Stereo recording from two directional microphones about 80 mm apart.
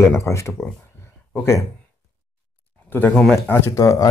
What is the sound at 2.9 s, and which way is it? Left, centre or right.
Speech, left.